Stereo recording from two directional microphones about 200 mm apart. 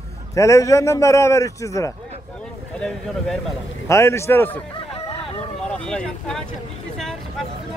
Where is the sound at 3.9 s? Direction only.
15° left (ahead or behind).